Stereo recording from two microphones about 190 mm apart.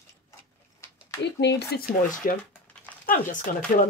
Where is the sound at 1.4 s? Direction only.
60° left (ahead or behind).